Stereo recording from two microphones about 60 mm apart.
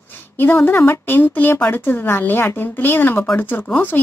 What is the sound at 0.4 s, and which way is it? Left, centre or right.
A woman's voice, left.